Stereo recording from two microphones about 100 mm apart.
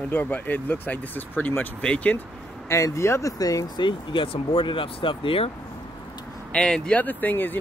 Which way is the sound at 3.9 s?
55° left (ahead or behind).